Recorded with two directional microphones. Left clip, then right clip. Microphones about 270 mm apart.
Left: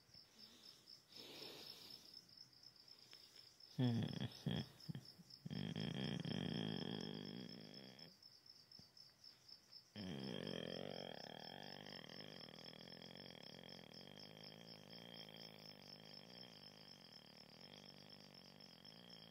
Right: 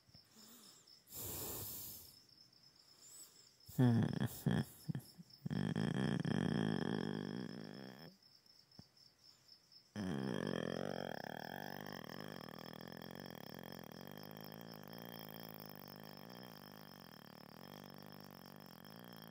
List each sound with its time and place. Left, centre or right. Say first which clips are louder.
1.1 s snort: right 6 dB; right
3.7 s a sound: right 7 dB; right
9.9 s burping: right 7 dB; right